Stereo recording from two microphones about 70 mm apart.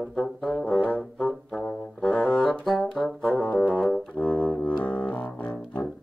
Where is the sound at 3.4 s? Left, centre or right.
Centre.